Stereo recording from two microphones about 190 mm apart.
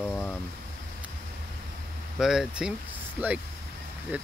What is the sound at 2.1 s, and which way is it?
Speech, 5° right (ahead or behind).